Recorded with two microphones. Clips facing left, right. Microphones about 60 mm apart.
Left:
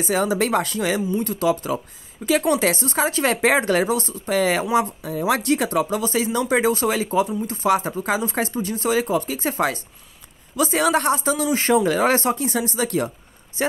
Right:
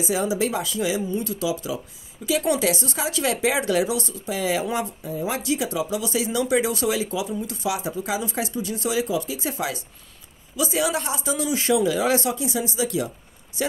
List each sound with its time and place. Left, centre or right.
0.0 s speech: left
4.3 s speech: left
13.6 s speech: left